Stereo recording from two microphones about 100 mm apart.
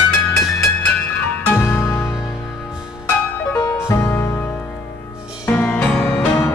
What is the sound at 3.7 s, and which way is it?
Music, 25° left (ahead or behind).